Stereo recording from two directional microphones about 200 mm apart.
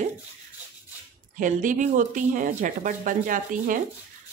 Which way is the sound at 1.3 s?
40° right (ahead or behind).